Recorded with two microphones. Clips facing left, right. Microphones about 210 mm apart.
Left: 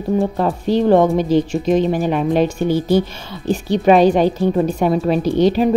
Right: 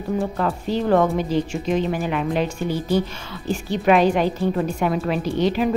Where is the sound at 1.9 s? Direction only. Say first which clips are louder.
Left 6 dB; 35° left (ahead or behind).